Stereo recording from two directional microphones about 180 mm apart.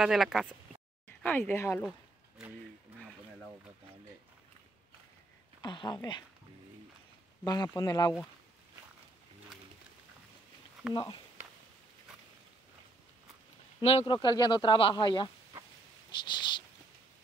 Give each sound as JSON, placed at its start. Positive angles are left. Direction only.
{"t": 0.0, "sound": "speech", "side_deg": 0}
{"t": 1.0, "sound": "speech", "side_deg": 10}
{"t": 1.9, "sound": "a sound", "side_deg": -5}
{"t": 5.6, "sound": "speech", "side_deg": 25}
{"t": 7.4, "sound": "speech", "side_deg": 20}
{"t": 10.9, "sound": "speech", "side_deg": 25}
{"t": 13.7, "sound": "speech", "side_deg": 30}